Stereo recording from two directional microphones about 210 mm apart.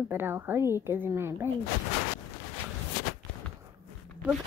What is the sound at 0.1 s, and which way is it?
A woman's voice, 10° right (ahead or behind).